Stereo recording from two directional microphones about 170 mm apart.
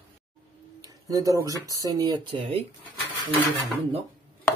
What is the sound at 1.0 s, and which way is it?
Speech, 20° right (ahead or behind).